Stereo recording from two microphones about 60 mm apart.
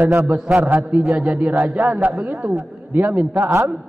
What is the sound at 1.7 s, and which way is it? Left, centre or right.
A man's voice, right.